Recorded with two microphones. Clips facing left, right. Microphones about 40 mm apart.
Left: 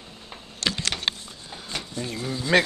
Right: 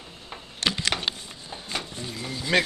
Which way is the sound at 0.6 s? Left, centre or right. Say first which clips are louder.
Right 1 dB; right.